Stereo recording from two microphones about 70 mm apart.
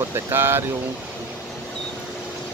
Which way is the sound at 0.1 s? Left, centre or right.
Right.